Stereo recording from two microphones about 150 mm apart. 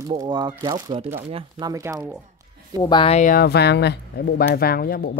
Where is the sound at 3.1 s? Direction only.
65° left (ahead or behind).